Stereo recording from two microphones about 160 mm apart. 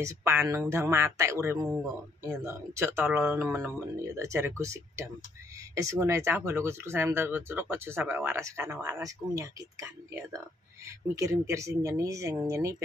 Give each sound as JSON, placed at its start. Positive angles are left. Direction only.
{"t": 0.0, "sound": "speech", "side_deg": -15}